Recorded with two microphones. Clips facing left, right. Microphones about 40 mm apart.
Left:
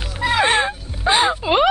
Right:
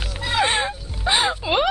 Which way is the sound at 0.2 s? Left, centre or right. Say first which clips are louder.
Left 4 dB; centre.